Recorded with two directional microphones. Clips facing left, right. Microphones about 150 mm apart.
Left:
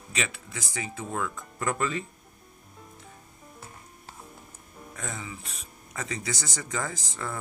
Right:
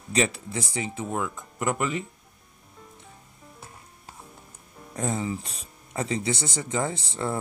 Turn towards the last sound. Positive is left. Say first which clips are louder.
# right 6 dB
turn(degrees=-30)  # may be behind; listen again after turning